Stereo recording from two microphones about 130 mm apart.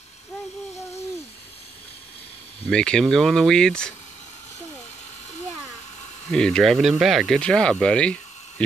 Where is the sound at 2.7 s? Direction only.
5° left (ahead or behind).